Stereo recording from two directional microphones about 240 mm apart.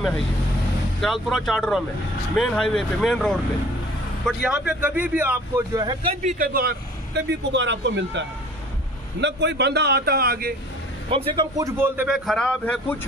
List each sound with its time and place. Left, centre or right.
1.0 s a man's voice: centre
6.2 s a man's voice: right
11.1 s a man's voice: centre